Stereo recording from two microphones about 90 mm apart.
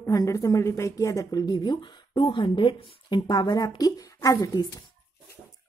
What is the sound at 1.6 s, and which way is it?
Speech, 60° left (ahead or behind).